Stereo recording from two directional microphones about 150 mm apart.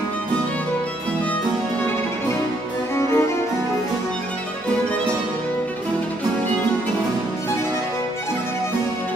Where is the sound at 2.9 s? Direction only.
20° left (ahead or behind).